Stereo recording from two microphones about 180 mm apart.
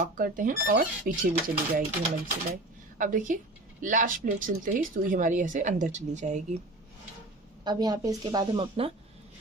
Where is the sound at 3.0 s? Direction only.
50° right (ahead or behind).